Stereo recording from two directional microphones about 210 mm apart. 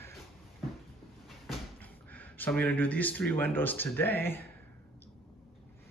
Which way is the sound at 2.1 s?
5° left (ahead or behind).